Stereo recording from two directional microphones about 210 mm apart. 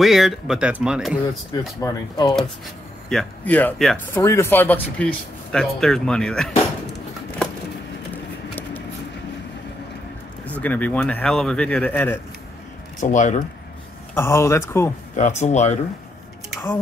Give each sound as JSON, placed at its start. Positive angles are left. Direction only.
{"t": 0.0, "sound": "speech", "side_deg": 0}
{"t": 1.8, "sound": "speech", "side_deg": 20}
{"t": 3.1, "sound": "speech", "side_deg": 5}
{"t": 4.1, "sound": "speech", "side_deg": 15}
{"t": 10.6, "sound": "speech", "side_deg": 10}
{"t": 13.0, "sound": "speech", "side_deg": 35}
{"t": 14.1, "sound": "speech", "side_deg": 10}
{"t": 15.1, "sound": "speech", "side_deg": 35}